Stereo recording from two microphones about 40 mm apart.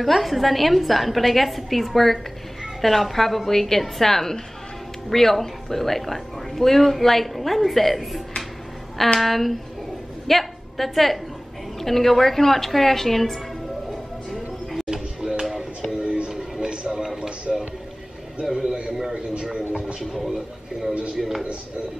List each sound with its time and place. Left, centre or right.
0.0 s a woman's voice: centre
9.2 s a woman's voice: centre
13.8 s music: centre
14.9 s music: right
16.3 s a sound: centre
16.9 s a man's voice: centre
20.2 s a woman's voice: centre